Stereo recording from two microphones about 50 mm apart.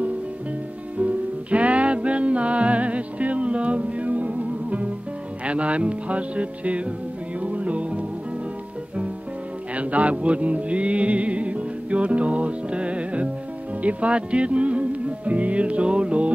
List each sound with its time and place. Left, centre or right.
0.9 s music: right
5.4 s speech: right
7.4 s music: right
9.8 s music: right